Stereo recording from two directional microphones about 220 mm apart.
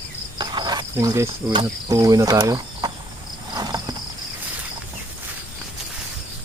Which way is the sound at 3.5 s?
20° right (ahead or behind).